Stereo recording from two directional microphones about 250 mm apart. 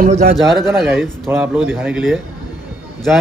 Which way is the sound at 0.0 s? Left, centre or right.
Right.